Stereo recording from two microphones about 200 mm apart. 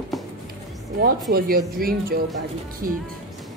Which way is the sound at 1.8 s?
45° right (ahead or behind).